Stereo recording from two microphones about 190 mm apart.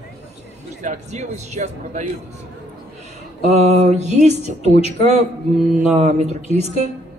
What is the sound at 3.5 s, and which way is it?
Speech, 35° right (ahead or behind).